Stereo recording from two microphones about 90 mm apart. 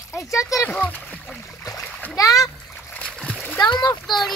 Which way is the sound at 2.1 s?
40° left (ahead or behind).